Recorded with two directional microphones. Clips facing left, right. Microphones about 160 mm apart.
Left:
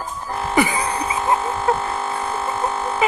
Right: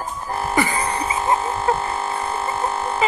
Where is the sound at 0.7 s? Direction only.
Centre (ahead or behind).